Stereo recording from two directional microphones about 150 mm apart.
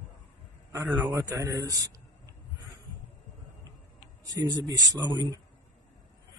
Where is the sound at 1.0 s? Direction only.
20° right (ahead or behind).